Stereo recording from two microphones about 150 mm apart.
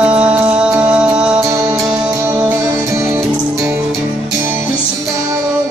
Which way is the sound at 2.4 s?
15° right (ahead or behind).